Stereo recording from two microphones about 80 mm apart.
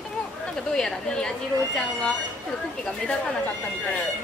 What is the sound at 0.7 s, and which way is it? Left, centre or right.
A woman's voice, centre.